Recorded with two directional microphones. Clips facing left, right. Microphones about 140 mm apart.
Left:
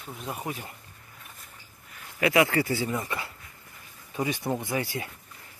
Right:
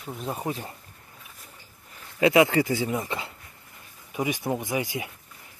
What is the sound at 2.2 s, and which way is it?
Speech, 20° right (ahead or behind).